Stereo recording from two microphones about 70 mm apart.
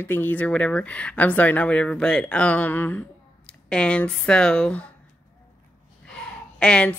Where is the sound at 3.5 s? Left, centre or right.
Centre.